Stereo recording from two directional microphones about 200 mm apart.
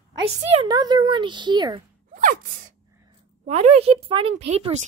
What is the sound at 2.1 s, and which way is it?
Gasp, 40° right (ahead or behind).